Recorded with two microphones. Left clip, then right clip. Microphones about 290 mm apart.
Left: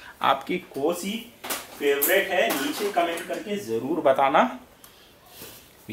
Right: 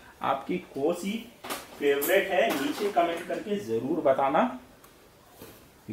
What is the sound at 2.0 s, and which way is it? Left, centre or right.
Speech, centre.